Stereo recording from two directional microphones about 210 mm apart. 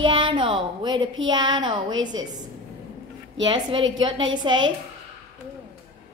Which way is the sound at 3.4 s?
20° right (ahead or behind).